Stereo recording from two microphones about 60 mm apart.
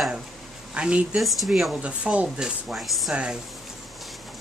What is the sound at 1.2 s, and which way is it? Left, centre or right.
Speech, centre.